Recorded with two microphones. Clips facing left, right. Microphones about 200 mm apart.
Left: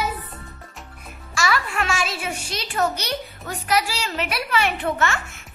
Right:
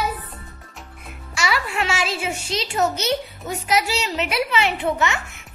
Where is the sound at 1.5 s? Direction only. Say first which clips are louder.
Right 1 dB; 25° right (ahead or behind).